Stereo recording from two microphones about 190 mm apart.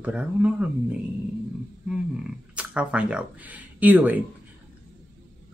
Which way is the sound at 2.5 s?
5° right (ahead or behind).